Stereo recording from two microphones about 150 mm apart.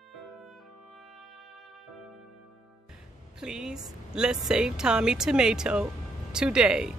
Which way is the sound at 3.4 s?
5° right (ahead or behind).